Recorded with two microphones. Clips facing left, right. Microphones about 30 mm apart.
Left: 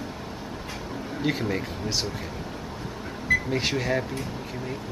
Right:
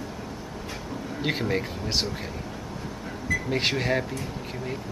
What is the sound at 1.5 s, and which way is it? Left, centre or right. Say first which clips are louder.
Speech: right 1 dB; centre.